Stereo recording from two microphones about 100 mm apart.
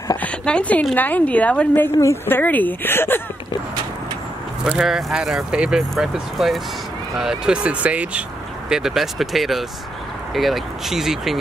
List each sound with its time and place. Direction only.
0.2 s a woman's voice: 10° left (ahead or behind)
2.0 s speech: 25° left (ahead or behind)
4.6 s speech: 5° right (ahead or behind)